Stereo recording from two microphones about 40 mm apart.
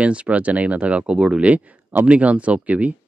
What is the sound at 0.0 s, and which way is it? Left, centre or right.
Speech, right.